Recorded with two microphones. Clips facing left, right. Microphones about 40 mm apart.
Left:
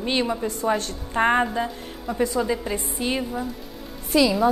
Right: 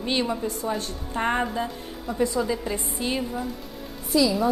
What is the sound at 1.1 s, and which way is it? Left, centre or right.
A woman's voice, left.